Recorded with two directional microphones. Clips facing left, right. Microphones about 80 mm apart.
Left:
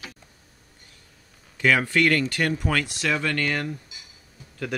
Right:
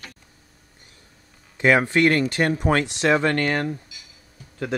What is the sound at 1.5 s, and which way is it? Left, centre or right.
Speech, right.